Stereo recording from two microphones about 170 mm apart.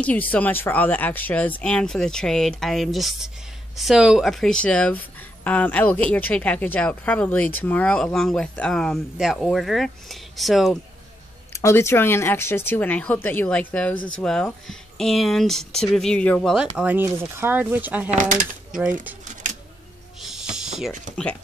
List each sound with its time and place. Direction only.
0.0 s speech: 10° left (ahead or behind)
11.5 s speech: 15° left (ahead or behind)
16.7 s speech: 10° right (ahead or behind)
18.1 s speech: 50° right (ahead or behind)
20.2 s music: 5° right (ahead or behind)